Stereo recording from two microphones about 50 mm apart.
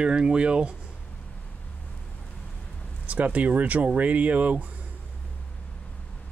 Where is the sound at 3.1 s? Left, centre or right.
Right.